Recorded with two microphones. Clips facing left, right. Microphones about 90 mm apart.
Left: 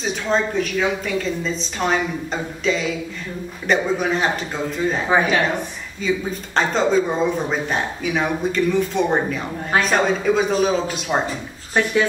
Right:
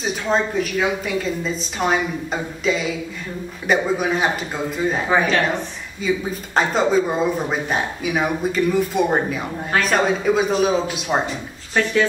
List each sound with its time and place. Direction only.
0.0 s speech: 5° right (ahead or behind)
5.1 s speech: 15° left (ahead or behind)
6.0 s speech: 5° right (ahead or behind)
11.7 s speech: 20° left (ahead or behind)